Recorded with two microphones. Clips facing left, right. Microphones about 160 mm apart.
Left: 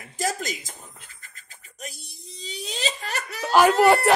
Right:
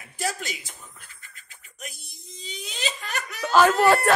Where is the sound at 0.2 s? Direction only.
40° left (ahead or behind).